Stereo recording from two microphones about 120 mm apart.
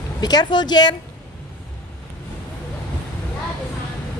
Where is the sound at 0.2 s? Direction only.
35° left (ahead or behind).